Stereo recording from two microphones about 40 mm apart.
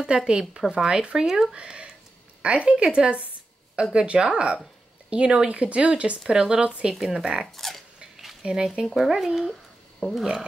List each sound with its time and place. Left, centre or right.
0.0 s speech: right
1.5 s speech: right
7.5 s speech: centre
8.4 s speech: centre